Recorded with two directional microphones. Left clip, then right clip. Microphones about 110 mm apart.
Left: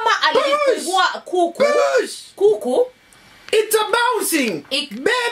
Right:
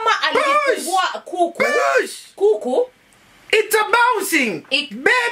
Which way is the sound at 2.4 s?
10° left (ahead or behind).